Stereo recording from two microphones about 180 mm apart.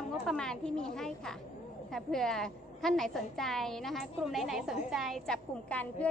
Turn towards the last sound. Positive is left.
turn(degrees=5)  # may be behind; listen again after turning